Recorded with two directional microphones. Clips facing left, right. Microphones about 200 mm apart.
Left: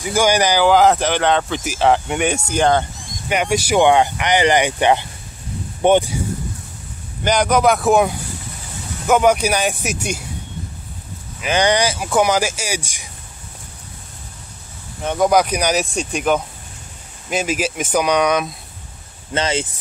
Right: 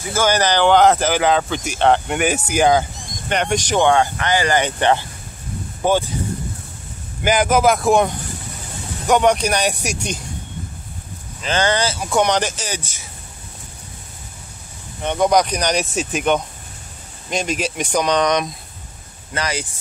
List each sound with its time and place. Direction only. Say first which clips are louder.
0.1 s speech: left 2 dB; 15° left (ahead or behind); by 2.9 s 5° right (ahead or behind)
3.3 s speech: left 2 dB; 5° left (ahead or behind)
7.2 s speech: even; 5° right (ahead or behind)
11.4 s speech: left 2 dB; 15° left (ahead or behind)
15.0 s speech: left 1 dB; 5° left (ahead or behind)
19.3 s speech: left 4 dB; 25° left (ahead or behind)